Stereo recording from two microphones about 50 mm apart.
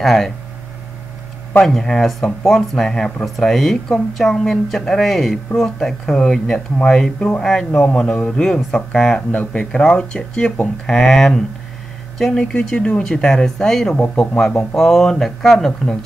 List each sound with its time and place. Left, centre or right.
0.0 s speech: centre
1.6 s speech: centre
7.4 s speech: centre
7.8 s speech: left
10.9 s speech: centre